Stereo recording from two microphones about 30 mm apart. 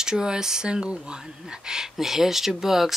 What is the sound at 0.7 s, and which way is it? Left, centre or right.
Speech, right.